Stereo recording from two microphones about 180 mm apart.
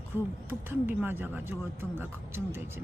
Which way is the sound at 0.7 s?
10° right (ahead or behind).